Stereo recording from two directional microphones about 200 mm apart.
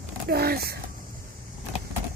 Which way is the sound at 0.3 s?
50° right (ahead or behind).